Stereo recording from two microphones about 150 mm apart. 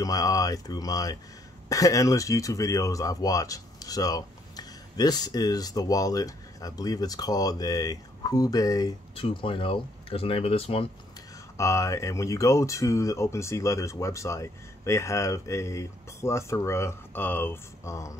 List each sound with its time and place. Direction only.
0.0 s speech: 25° left (ahead or behind)
9.1 s speech: 35° left (ahead or behind)
11.5 s speech: 20° left (ahead or behind)